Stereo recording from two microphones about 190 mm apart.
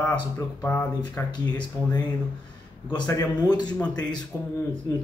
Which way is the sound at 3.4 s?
20° left (ahead or behind).